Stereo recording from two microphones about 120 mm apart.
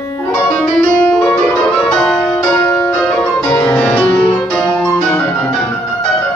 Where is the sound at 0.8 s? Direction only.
5° left (ahead or behind).